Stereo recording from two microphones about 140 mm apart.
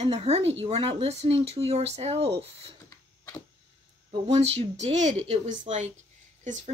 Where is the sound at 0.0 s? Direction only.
45° right (ahead or behind).